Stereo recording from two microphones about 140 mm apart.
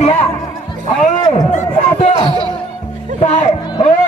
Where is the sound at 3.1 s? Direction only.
55° left (ahead or behind).